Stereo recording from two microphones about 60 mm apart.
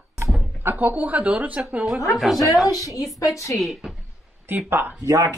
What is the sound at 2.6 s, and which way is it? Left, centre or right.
Speech, left.